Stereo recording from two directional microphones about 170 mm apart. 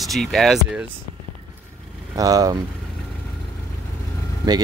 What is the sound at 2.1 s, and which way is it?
Speech, 20° right (ahead or behind).